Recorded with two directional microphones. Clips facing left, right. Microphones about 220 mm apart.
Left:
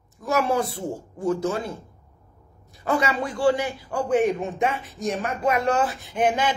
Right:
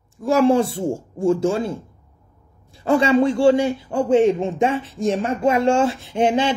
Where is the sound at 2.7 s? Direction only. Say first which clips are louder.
Right 8 dB; 30° right (ahead or behind).